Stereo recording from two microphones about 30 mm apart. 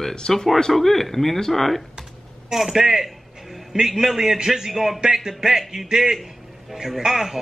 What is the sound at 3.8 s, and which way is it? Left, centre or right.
A man's voice, centre.